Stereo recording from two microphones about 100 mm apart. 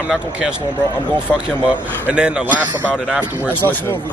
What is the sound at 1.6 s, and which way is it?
A man's voice, 10° right (ahead or behind).